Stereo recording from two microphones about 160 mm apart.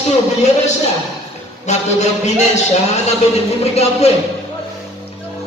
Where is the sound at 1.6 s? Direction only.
45° left (ahead or behind).